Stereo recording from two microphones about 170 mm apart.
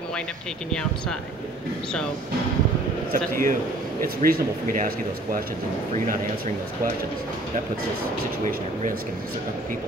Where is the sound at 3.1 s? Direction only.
55° right (ahead or behind).